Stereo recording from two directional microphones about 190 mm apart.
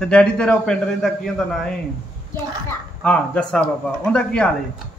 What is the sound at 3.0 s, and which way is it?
A man's voice, 5° left (ahead or behind).